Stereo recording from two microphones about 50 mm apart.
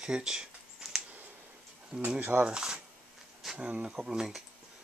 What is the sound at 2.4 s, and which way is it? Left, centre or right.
Speech, centre.